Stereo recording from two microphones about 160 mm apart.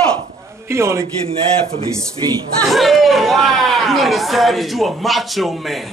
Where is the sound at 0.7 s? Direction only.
15° right (ahead or behind).